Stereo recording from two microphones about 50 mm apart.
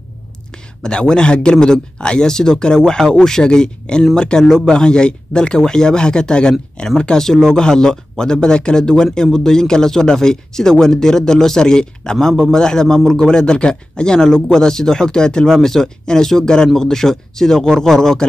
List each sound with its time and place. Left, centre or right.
0.8 s speech: centre